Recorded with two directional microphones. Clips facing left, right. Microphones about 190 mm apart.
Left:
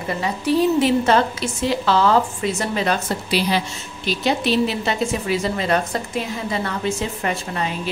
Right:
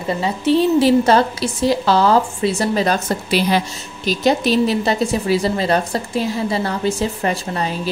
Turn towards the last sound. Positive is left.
turn(degrees=-35)  # may be behind; listen again after turning